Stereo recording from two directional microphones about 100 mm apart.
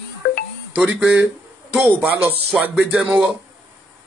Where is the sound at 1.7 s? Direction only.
Centre (ahead or behind).